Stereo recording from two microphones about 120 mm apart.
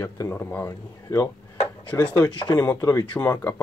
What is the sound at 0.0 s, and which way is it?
Speech, 20° left (ahead or behind).